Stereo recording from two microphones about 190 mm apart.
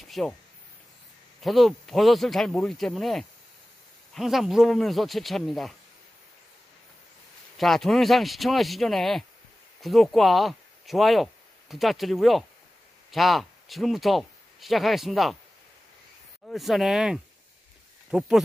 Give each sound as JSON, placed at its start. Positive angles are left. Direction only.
{"t": 0.0, "sound": "a sound", "side_deg": 0}
{"t": 1.4, "sound": "speech", "side_deg": 0}
{"t": 7.5, "sound": "speech", "side_deg": 0}
{"t": 16.4, "sound": "speech", "side_deg": 0}